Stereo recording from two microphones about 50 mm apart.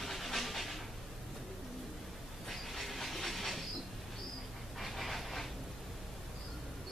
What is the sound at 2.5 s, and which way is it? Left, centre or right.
Train, centre.